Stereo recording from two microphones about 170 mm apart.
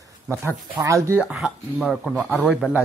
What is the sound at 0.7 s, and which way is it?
Speech, 20° right (ahead or behind).